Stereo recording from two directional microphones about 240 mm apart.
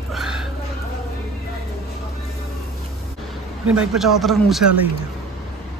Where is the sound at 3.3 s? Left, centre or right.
Centre.